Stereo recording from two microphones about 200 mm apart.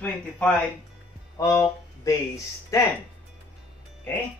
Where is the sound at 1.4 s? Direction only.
15° left (ahead or behind).